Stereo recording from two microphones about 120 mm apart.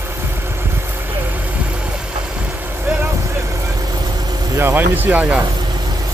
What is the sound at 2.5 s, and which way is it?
Vehicle, 20° right (ahead or behind).